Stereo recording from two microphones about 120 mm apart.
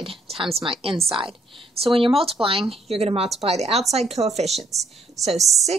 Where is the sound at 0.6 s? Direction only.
50° right (ahead or behind).